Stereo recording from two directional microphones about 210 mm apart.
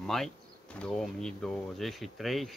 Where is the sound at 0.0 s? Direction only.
Centre (ahead or behind).